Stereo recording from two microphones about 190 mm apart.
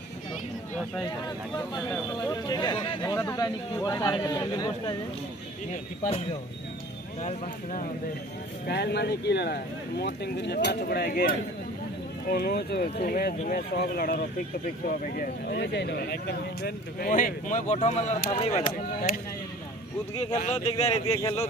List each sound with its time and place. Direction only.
2.3 s a man's voice: 20° left (ahead or behind)
7.2 s speech: 40° left (ahead or behind)
8.6 s a man's voice: 60° left (ahead or behind); by 18.6 s 30° left (ahead or behind)
20.2 s speech: 35° left (ahead or behind)
21.1 s speech: 15° left (ahead or behind)